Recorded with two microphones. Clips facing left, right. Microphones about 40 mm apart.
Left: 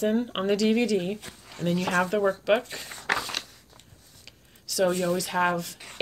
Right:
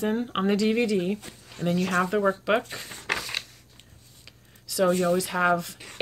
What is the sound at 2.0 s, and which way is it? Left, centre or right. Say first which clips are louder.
Speech: even; centre.